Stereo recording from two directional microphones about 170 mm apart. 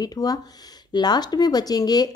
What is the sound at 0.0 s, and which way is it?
A woman's voice, 25° left (ahead or behind).